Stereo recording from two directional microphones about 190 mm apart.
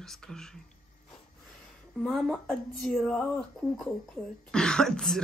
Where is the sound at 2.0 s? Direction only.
Centre (ahead or behind).